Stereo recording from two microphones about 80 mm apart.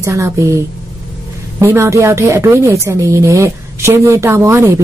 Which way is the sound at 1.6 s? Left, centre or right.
Right.